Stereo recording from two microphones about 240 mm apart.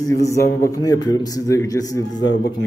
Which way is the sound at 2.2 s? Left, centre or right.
Left.